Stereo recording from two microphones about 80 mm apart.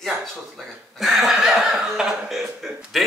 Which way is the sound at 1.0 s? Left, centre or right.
Centre.